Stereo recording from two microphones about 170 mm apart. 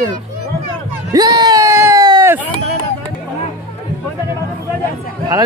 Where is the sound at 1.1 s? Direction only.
20° right (ahead or behind).